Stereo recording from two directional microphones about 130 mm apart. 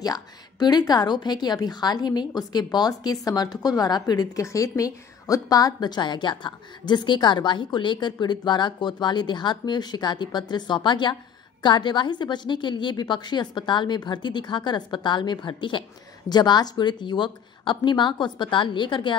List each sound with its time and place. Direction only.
0.0 s a woman's voice: 30° left (ahead or behind)